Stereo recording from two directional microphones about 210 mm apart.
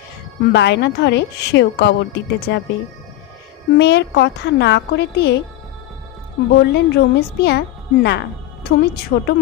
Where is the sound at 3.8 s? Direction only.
55° left (ahead or behind).